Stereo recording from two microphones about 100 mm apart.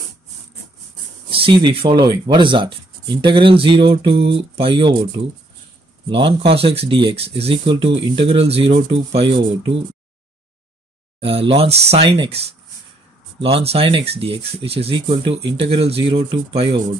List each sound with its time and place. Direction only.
1.3 s speech: 60° right (ahead or behind)
6.0 s speech: 60° right (ahead or behind)
11.1 s speech: 70° right (ahead or behind)
15.0 s speech: 55° right (ahead or behind)